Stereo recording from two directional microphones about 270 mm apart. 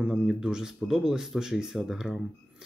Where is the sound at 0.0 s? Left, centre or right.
Centre.